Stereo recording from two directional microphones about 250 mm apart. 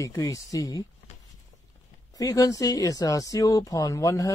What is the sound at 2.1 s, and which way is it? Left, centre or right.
Speech, centre.